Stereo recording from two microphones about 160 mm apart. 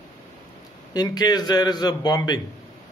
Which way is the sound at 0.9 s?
25° left (ahead or behind).